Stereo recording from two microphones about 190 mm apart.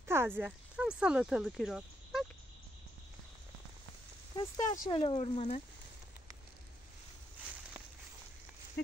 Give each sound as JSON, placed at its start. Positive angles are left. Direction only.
{"t": 0.0, "sound": "speech", "side_deg": -10}
{"t": 4.4, "sound": "speech", "side_deg": 20}